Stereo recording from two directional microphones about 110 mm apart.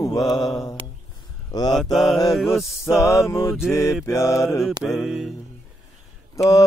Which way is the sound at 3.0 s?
25° left (ahead or behind).